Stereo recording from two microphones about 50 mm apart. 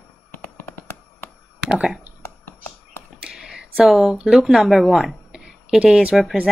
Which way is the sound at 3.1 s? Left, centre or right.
Centre.